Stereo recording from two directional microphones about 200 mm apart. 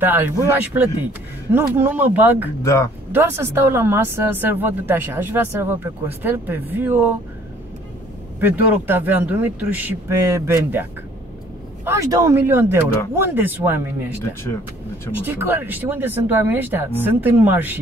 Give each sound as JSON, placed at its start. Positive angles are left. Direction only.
{"t": 0.0, "sound": "speech", "side_deg": -10}
{"t": 2.6, "sound": "speech", "side_deg": 15}
{"t": 3.1, "sound": "speech", "side_deg": -10}
{"t": 8.4, "sound": "speech", "side_deg": -10}
{"t": 15.2, "sound": "speech", "side_deg": -10}